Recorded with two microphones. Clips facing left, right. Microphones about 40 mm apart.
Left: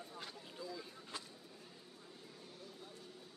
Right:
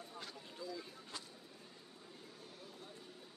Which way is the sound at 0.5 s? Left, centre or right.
Centre.